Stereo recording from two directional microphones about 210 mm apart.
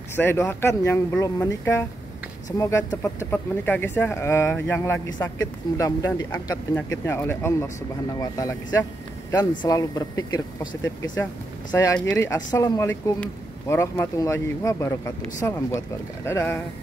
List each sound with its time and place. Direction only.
0.1 s speech: 10° left (ahead or behind)
16.3 s speech: 10° left (ahead or behind)